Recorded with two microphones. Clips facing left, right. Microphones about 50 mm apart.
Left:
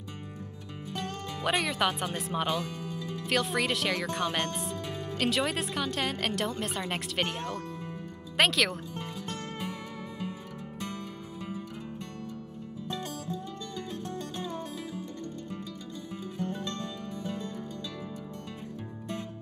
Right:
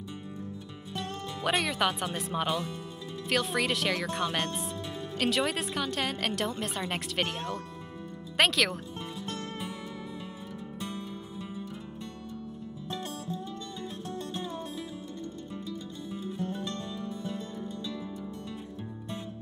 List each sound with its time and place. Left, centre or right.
1.4 s speech: centre
10.9 s music: left